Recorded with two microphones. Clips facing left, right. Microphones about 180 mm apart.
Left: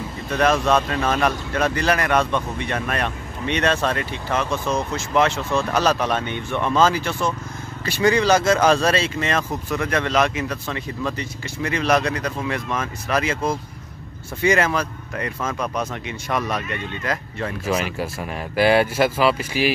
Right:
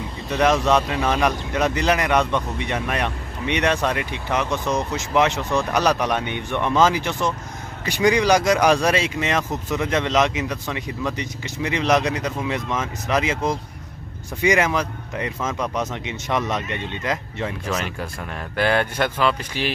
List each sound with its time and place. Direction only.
0.3 s speech: 15° right (ahead or behind)
17.6 s speech: 5° left (ahead or behind)